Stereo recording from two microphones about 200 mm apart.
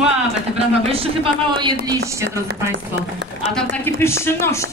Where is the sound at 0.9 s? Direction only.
25° right (ahead or behind).